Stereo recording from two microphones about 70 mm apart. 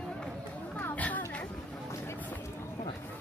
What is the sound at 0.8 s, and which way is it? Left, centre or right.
Chatter, left.